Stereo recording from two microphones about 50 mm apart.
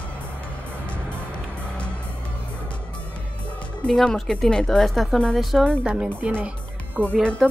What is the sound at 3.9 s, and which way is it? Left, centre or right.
Speech, centre.